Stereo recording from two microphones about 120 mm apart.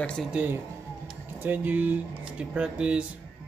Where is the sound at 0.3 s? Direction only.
10° right (ahead or behind).